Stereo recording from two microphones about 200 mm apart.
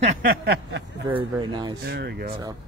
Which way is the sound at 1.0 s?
25° right (ahead or behind).